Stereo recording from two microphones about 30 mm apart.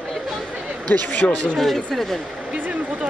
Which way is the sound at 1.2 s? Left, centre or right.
Left.